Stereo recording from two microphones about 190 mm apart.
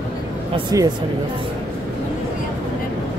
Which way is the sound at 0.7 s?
20° right (ahead or behind).